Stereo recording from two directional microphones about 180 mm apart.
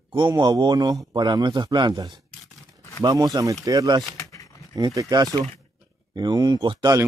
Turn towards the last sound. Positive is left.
turn(degrees=-20)  # may be behind; listen again after turning